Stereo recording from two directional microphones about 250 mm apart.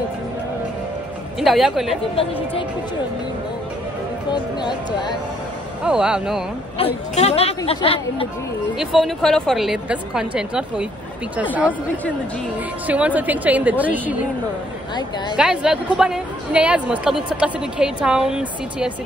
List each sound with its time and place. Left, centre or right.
1.4 s a woman's voice: centre
4.3 s speech: centre
5.9 s a woman's voice: centre
7.2 s speech: left
8.7 s a woman's voice: centre
12.8 s a woman's voice: centre
15.3 s a woman's voice: centre